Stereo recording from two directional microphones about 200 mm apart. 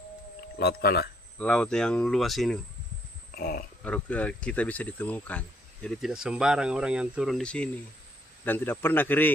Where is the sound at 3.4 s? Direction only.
50° left (ahead or behind).